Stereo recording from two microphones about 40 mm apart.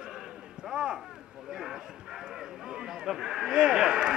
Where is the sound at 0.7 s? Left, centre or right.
Right.